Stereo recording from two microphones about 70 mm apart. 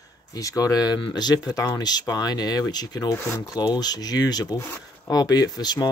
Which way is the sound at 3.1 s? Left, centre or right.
Left.